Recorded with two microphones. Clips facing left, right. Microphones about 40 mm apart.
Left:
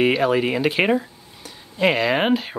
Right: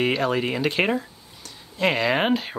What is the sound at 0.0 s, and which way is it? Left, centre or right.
Speech, centre.